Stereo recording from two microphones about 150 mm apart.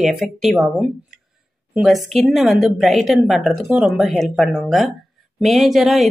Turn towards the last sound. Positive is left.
turn(degrees=0)  # may be behind; listen again after turning